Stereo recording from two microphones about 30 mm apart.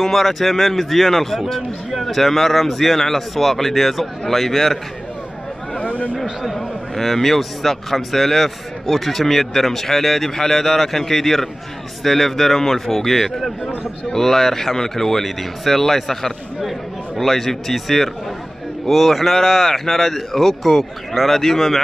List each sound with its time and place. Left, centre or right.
0.0 s a man's voice: centre
5.8 s speech: left
6.4 s a man's voice: centre